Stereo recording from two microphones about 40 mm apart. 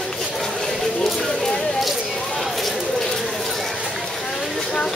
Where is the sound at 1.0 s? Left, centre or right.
Centre.